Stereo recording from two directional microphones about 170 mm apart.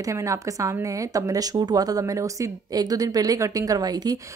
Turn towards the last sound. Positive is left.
turn(degrees=-20)  # may be behind; listen again after turning